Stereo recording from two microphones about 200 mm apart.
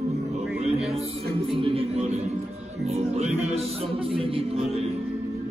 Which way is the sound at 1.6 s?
30° right (ahead or behind).